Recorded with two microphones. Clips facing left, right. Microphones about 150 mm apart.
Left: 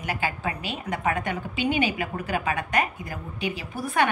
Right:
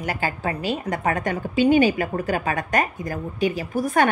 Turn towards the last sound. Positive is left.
turn(degrees=-45)  # may be behind; listen again after turning